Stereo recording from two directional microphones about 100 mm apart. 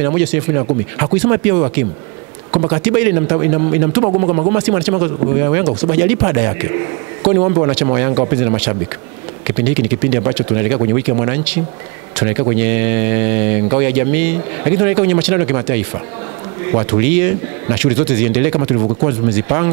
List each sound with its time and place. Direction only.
0.0 s speech: 15° right (ahead or behind)
18.6 s speech: 25° right (ahead or behind)